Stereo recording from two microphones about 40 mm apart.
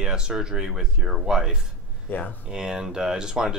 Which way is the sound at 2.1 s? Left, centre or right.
Left.